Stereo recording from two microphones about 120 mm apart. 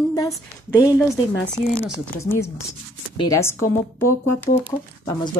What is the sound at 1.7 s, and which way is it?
Speech, 20° left (ahead or behind).